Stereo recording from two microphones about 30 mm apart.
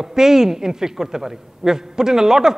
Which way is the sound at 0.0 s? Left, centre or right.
Centre.